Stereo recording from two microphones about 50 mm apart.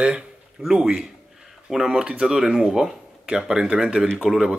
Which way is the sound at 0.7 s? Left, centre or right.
Centre.